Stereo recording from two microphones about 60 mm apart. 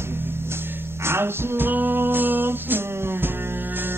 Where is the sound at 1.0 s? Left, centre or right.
Right.